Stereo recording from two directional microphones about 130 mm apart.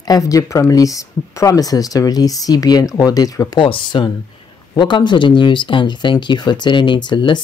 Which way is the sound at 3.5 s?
40° left (ahead or behind).